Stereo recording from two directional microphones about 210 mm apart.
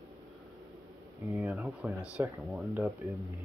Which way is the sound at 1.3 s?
5° right (ahead or behind).